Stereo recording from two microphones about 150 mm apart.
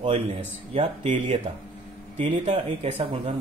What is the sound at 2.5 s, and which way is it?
Speech, 40° right (ahead or behind).